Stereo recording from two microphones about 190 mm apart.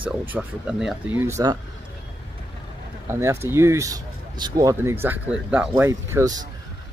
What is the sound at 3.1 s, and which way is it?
Speech, 15° right (ahead or behind).